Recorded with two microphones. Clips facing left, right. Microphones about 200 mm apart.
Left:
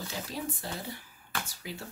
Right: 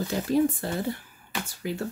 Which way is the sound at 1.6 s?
55° right (ahead or behind).